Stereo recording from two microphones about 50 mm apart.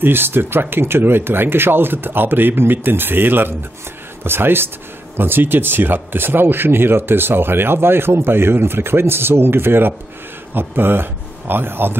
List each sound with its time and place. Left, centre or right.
0.0 s speech: right